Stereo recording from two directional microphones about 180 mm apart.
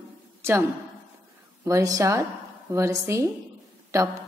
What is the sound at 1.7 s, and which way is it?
Speech, 15° right (ahead or behind).